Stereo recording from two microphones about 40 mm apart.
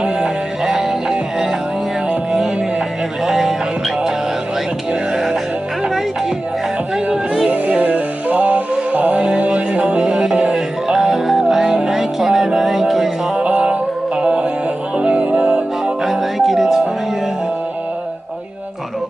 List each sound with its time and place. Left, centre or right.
0.7 s music: centre
3.3 s music: centre
5.1 s music: centre
7.4 s music: right
9.9 s music: centre
13.4 s music: right
16.0 s music: centre